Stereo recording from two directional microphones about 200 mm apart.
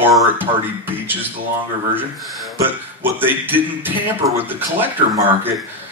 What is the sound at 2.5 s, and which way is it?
A man's voice, 10° right (ahead or behind).